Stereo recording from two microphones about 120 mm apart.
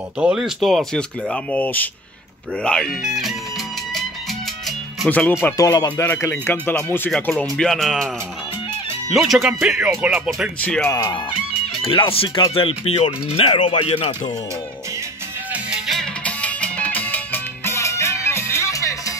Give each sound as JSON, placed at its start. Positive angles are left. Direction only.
{"t": 0.2, "sound": "speech", "side_deg": -5}
{"t": 1.3, "sound": "speech", "side_deg": 10}
{"t": 4.6, "sound": "music", "side_deg": 10}
{"t": 5.6, "sound": "speech", "side_deg": 30}
{"t": 6.0, "sound": "speech", "side_deg": 20}
{"t": 7.5, "sound": "speech", "side_deg": 0}
{"t": 9.1, "sound": "speech", "side_deg": 0}
{"t": 10.6, "sound": "speech", "side_deg": 10}
{"t": 10.9, "sound": "speech", "side_deg": 25}
{"t": 11.8, "sound": "speech", "side_deg": 50}
{"t": 15.5, "sound": "music", "side_deg": 0}
{"t": 16.3, "sound": "music", "side_deg": 10}